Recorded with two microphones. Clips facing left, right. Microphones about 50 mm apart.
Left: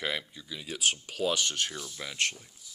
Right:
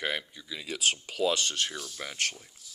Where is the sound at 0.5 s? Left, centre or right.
Right.